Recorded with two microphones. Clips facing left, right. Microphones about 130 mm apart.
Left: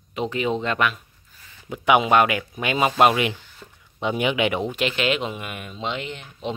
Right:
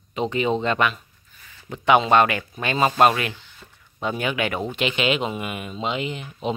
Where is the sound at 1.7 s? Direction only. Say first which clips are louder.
Right 1 dB; 10° left (ahead or behind).